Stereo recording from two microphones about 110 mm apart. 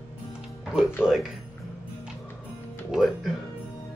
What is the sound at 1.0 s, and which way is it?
Speech, 20° left (ahead or behind).